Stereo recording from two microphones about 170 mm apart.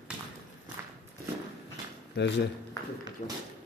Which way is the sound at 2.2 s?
90° left.